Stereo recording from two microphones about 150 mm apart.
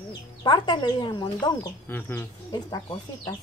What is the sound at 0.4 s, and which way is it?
Speech, 30° left (ahead or behind).